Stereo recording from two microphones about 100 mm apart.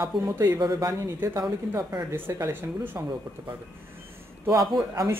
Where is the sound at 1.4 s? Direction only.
40° right (ahead or behind).